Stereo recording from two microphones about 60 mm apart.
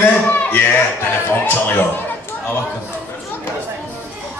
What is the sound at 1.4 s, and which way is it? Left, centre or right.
Speech, left.